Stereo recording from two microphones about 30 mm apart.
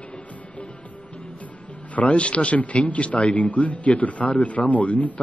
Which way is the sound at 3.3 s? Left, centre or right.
Left.